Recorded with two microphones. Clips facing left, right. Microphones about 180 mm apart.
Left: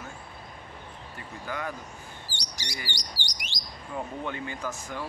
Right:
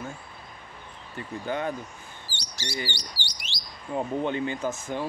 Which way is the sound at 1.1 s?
25° right (ahead or behind).